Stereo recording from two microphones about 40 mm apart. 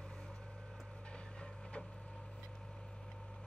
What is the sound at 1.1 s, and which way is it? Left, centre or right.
Vehicle, left.